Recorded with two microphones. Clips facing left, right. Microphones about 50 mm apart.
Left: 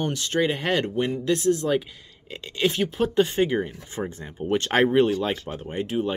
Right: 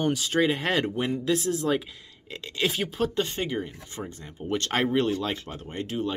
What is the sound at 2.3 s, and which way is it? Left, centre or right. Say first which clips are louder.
Speech: left 3 dB; centre.